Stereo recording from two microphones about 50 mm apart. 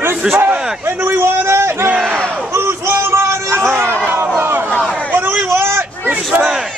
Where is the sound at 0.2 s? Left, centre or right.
Centre.